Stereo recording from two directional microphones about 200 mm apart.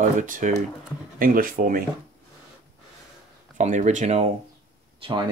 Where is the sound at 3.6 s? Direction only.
40° right (ahead or behind).